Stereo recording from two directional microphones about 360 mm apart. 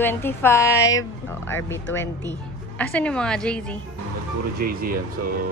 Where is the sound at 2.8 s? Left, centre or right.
Centre.